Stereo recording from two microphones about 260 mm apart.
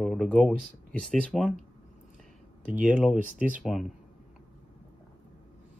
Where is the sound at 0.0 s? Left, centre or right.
Centre.